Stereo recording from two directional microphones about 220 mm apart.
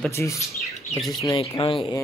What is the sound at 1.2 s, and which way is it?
Speech, 20° left (ahead or behind).